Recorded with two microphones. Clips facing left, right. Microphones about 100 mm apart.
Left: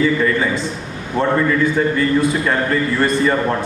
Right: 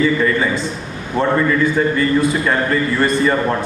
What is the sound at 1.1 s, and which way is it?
A man's voice, 30° right (ahead or behind).